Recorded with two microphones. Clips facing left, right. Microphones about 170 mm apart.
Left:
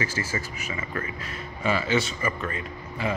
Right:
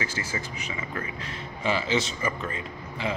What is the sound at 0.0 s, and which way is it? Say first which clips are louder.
A man's voice: left 3 dB; 15° right (ahead or behind).